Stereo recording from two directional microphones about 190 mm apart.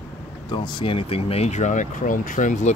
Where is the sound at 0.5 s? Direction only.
25° left (ahead or behind).